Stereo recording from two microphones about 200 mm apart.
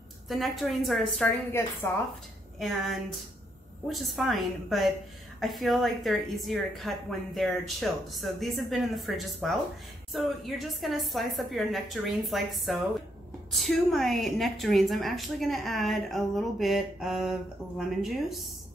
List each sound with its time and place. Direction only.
0.3 s a woman's voice: centre (ahead or behind)
1.6 s a woman's voice: 10° left (ahead or behind)
2.6 s a woman's voice: centre (ahead or behind)